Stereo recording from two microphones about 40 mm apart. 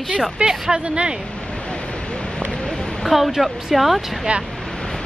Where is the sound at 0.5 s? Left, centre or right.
Centre.